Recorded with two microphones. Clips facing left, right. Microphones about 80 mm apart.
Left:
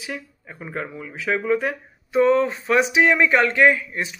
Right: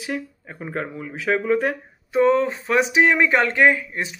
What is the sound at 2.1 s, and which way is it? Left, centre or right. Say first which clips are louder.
Speech: even; right.